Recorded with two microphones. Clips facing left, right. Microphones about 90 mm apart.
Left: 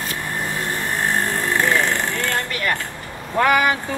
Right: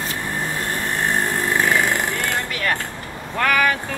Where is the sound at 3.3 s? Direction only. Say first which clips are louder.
Left 2 dB; 20° left (ahead or behind).